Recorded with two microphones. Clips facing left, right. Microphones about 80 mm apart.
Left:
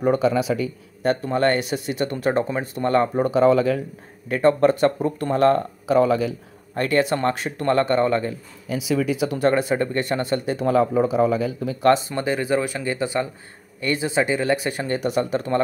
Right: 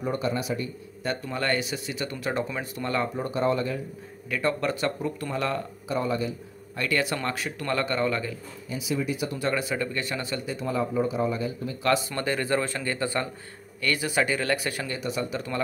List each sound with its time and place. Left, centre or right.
0.0 s speech: left
1.0 s speech: left
3.2 s speech: left
4.3 s speech: left
5.9 s speech: left
6.7 s speech: left
8.6 s speech: left
9.4 s a man's voice: left
11.8 s speech: left
12.2 s speech: centre
14.9 s speech: left